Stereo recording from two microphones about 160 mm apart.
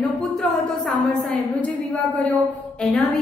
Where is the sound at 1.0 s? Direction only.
Centre (ahead or behind).